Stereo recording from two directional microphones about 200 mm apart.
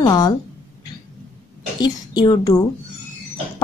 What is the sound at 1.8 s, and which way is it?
Speech, 20° left (ahead or behind).